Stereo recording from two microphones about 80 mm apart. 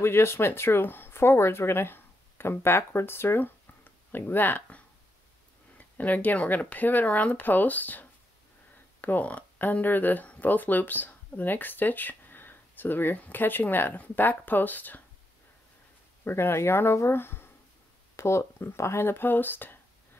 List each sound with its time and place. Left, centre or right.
0.0 s speech: left
16.3 s speech: left